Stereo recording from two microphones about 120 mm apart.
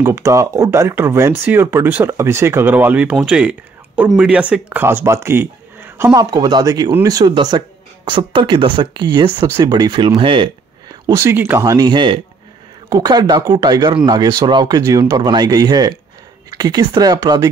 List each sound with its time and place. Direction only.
0.0 s speech: 25° right (ahead or behind)
6.1 s speech: 35° right (ahead or behind)
11.1 s speech: 20° right (ahead or behind)